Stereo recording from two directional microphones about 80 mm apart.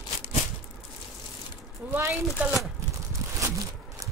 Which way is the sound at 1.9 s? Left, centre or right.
Right.